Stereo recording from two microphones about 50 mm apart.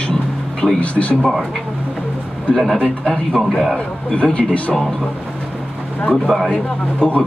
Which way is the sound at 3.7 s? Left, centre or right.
Left.